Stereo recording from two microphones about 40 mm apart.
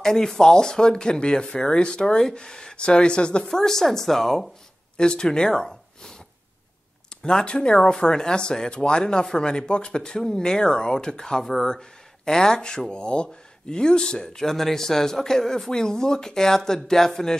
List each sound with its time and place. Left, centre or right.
0.0 s speech: centre
2.8 s speech: left
3.4 s speech: centre
4.9 s speech: left
7.2 s speech: left